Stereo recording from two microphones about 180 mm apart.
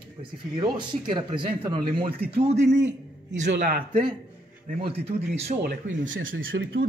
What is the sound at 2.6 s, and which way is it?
A man's voice, 75° right (ahead or behind).